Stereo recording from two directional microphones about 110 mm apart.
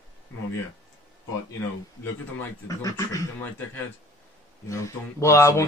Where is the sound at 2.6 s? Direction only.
30° left (ahead or behind).